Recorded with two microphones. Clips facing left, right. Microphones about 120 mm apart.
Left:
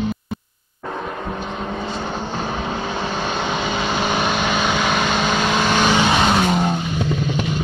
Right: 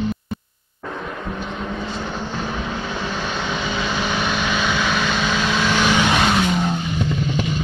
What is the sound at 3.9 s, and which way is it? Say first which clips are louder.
Vehicle: left 4 dB; 45° left (ahead or behind).